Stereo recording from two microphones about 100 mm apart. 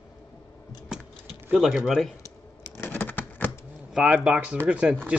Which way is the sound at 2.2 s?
25° left (ahead or behind).